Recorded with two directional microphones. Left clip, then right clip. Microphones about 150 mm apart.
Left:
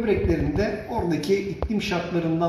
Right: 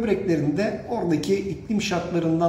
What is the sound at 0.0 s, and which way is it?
Speech, 25° right (ahead or behind).